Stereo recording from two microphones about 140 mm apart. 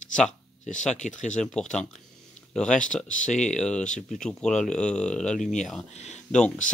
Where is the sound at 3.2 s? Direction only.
60° left (ahead or behind).